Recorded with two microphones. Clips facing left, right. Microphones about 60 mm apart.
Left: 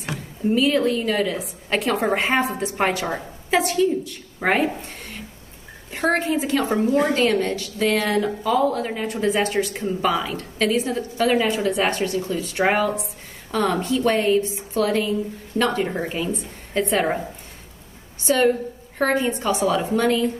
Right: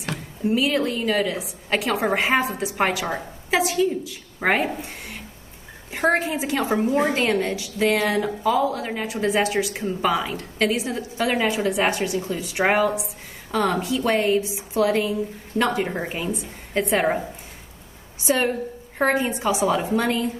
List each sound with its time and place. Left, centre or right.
0.0 s a woman's voice: centre
18.2 s a woman's voice: centre